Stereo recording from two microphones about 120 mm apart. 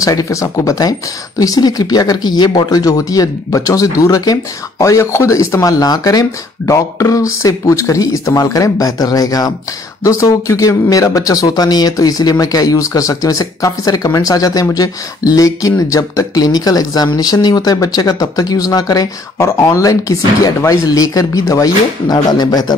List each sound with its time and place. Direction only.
0.0 s speech: 30° left (ahead or behind)